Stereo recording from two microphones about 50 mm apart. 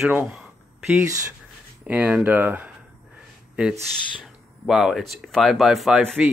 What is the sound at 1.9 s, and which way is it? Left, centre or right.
Speech, right.